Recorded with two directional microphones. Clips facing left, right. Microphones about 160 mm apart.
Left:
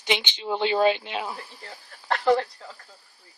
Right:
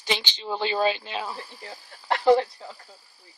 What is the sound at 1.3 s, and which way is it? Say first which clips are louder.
Speech: right 2 dB; centre (ahead or behind).